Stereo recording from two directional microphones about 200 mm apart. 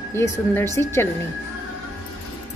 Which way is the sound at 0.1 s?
10° left (ahead or behind).